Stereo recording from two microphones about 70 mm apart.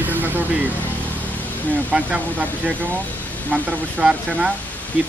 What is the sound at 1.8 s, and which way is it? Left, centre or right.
Speech, right.